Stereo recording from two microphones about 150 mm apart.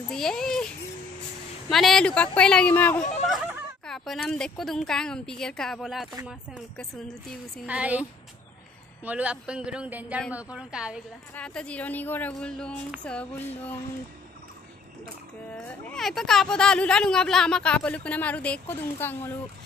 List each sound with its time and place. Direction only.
0.1 s a woman's voice: 5° left (ahead or behind)
1.7 s a woman's voice: centre (ahead or behind)
3.0 s a sound: 50° left (ahead or behind)
3.3 s a woman's voice: centre (ahead or behind)
7.6 s a woman's voice: 10° right (ahead or behind)
11.3 s speech: 5° left (ahead or behind)
15.8 s speech: 5° left (ahead or behind)